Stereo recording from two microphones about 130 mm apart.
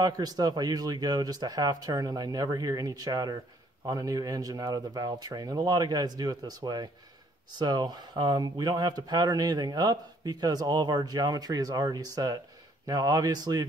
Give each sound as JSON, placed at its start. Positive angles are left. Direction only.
{"t": 0.0, "sound": "speech", "side_deg": -30}